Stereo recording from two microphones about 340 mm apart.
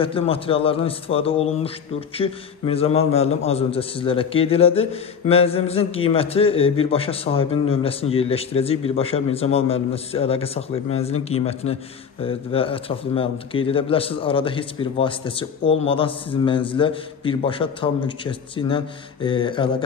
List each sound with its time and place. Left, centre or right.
0.0 s a man's voice: centre